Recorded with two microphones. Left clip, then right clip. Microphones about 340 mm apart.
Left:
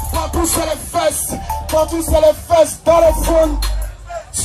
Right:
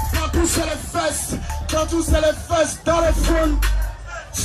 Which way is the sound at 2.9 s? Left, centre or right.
Centre.